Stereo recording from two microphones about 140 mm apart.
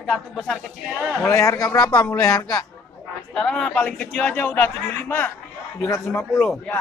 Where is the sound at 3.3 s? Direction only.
5° left (ahead or behind).